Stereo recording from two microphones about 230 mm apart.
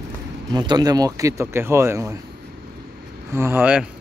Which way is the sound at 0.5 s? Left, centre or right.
Centre.